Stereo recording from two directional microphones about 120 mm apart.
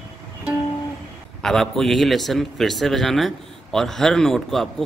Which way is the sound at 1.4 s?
5° left (ahead or behind).